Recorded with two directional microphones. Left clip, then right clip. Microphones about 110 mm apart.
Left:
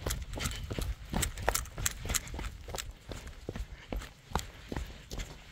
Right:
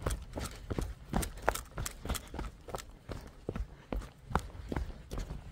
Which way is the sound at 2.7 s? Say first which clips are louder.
Left 1 dB; 5° right (ahead or behind).